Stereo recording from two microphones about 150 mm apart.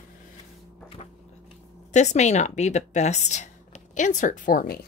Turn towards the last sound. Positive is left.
turn(degrees=70)  # may be behind; listen again after turning